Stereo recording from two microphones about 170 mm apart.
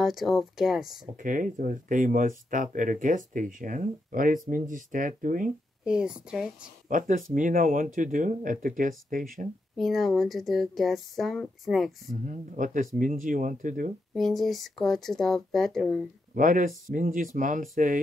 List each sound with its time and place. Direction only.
0.0 s speech: centre (ahead or behind)
1.1 s speech: 50° right (ahead or behind)
5.9 s speech: 5° right (ahead or behind)
6.9 s speech: 50° right (ahead or behind)
9.8 s speech: centre (ahead or behind)
12.1 s speech: 50° right (ahead or behind)
14.1 s speech: centre (ahead or behind)
16.3 s speech: 50° right (ahead or behind)